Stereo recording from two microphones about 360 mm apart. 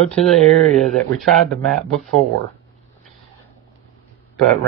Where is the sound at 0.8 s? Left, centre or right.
Centre.